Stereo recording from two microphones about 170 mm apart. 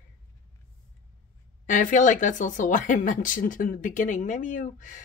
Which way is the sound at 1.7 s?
50° left (ahead or behind).